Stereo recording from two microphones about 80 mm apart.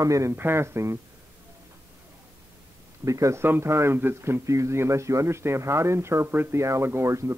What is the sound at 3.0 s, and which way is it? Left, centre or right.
A man's voice, right.